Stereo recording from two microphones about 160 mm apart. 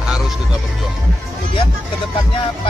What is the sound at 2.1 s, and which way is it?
Speech, 30° left (ahead or behind).